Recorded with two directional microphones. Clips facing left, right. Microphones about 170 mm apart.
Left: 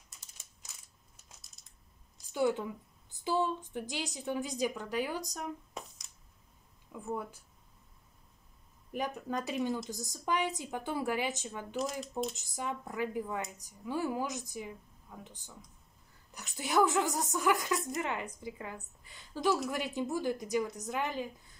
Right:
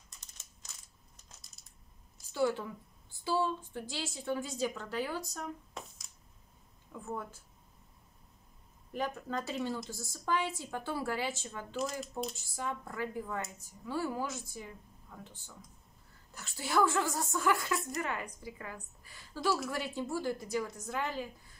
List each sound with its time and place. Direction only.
0.1 s a sound: 10° left (ahead or behind)
1.1 s crumpling: centre (ahead or behind)
2.3 s a woman's voice: 20° left (ahead or behind)
7.1 s a woman's voice: 15° left (ahead or behind)
8.9 s a woman's voice: 15° left (ahead or behind)